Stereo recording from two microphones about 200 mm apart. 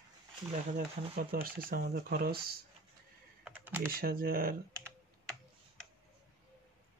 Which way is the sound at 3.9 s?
45° right (ahead or behind).